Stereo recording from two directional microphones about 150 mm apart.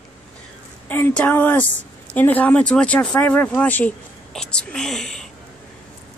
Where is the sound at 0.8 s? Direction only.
10° left (ahead or behind).